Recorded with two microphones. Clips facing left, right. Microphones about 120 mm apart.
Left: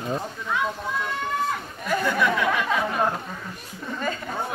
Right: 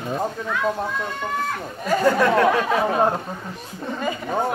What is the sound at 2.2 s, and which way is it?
Speech, 70° right (ahead or behind).